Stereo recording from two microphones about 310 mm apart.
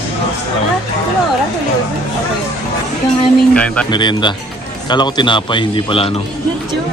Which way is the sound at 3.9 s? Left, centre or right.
Centre.